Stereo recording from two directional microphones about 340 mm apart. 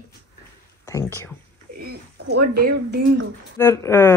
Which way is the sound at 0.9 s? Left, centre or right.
Centre.